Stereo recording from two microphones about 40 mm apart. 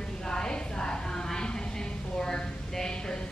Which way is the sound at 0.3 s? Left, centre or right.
Centre.